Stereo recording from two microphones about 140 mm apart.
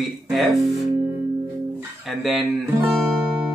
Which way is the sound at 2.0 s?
Centre (ahead or behind).